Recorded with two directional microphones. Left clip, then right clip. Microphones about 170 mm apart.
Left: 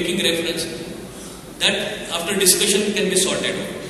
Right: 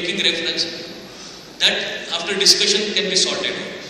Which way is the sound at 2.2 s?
40° right (ahead or behind).